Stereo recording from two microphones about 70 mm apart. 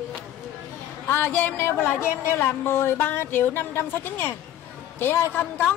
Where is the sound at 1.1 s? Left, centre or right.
Left.